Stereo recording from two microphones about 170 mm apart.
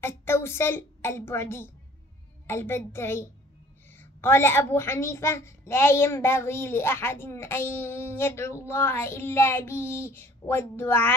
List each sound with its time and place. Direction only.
0.0 s a woman's voice: 15° left (ahead or behind)